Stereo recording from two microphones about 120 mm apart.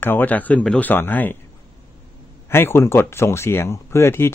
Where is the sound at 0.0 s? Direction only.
15° left (ahead or behind).